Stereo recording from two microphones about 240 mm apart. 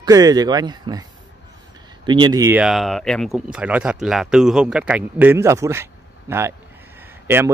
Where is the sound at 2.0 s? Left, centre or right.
Centre.